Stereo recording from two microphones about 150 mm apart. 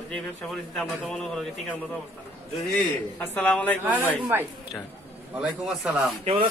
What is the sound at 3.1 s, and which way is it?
Speech, 10° left (ahead or behind).